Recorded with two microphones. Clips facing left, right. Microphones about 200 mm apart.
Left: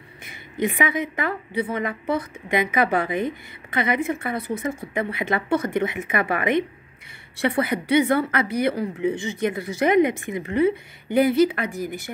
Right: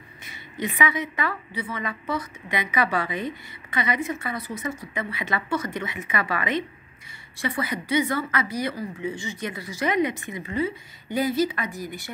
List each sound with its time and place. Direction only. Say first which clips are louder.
0.2 s a woman's voice: left 6 dB; 55° left (ahead or behind)